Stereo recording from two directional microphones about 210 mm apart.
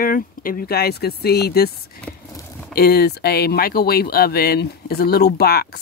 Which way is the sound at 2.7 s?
45° left (ahead or behind).